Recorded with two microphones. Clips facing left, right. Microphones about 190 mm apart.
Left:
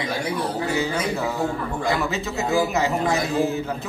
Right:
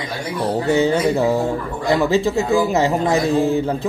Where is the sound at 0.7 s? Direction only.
25° right (ahead or behind).